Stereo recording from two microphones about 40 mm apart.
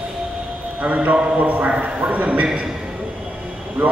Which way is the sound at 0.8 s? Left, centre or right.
Right.